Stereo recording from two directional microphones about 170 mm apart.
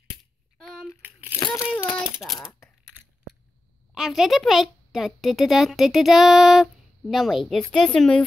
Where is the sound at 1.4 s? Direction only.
15° left (ahead or behind).